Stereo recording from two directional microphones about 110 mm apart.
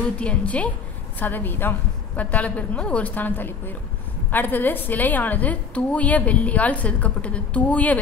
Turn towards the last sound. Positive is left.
turn(degrees=15)  # may be behind; listen again after turning